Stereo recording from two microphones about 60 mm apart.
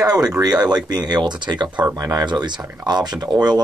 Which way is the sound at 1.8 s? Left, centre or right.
Right.